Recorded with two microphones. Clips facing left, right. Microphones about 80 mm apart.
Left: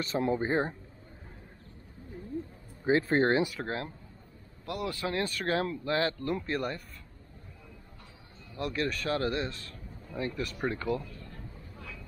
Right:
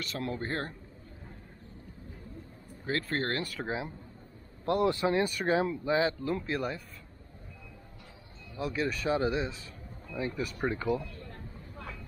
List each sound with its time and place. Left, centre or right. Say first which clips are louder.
0.0 s speech: left 6 dB; left
3.0 s speech: left 6 dB; left
3.5 s speech: even; centre
4.6 s speech: right 7 dB; right; by 6.8 s centre
8.5 s speech: even; centre
11.1 s a sound: right 1 dB; right